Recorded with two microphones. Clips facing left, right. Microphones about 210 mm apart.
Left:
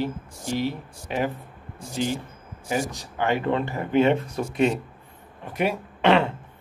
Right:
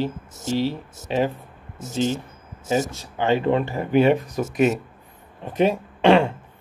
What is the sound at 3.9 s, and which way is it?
Speech, 20° left (ahead or behind).